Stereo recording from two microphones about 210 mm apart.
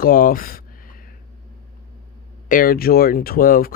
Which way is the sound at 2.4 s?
40° left (ahead or behind).